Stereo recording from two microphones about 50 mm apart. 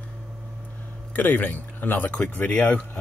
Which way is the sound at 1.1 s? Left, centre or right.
Left.